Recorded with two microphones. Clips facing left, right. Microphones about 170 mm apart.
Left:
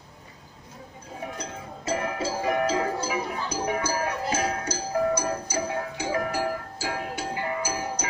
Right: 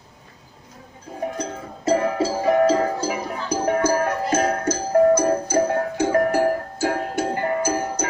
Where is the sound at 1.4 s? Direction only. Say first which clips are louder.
Right 6 dB; 40° right (ahead or behind).